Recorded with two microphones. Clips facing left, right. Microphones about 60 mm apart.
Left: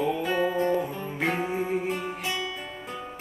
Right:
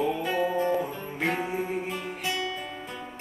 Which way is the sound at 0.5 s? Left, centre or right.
Centre.